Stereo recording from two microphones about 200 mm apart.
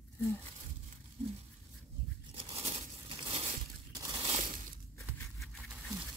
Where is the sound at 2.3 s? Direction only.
30° right (ahead or behind).